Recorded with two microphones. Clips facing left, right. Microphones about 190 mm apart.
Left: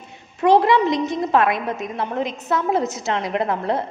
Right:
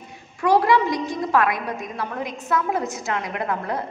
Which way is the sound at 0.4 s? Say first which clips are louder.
Left 3 dB; 25° left (ahead or behind).